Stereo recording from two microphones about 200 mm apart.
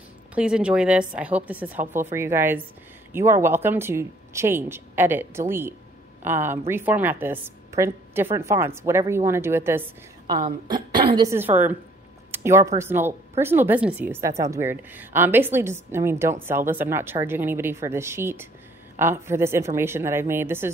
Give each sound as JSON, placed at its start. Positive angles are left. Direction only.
{"t": 0.3, "sound": "a woman's voice", "side_deg": -5}